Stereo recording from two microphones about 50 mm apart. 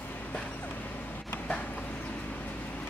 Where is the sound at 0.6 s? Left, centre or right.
Left.